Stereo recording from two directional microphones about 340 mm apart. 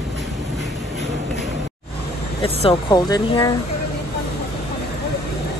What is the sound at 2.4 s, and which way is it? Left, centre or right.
Speech, centre.